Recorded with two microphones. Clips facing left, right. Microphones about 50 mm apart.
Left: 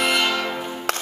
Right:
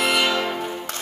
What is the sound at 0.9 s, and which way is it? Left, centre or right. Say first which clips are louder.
Music: left 7 dB; left.